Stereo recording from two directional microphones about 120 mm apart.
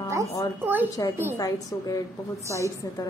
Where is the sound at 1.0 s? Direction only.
30° left (ahead or behind).